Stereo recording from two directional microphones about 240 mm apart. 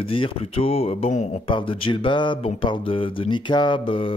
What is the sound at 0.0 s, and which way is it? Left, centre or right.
Speech, left.